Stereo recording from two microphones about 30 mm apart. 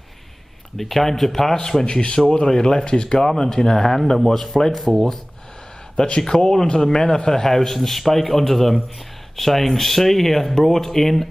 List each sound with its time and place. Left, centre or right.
0.7 s a man's voice: centre
1.9 s a man's voice: left; by 5.2 s centre
6.2 s a man's voice: centre